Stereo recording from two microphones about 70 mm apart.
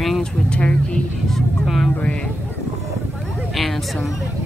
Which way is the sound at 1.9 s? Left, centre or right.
Left.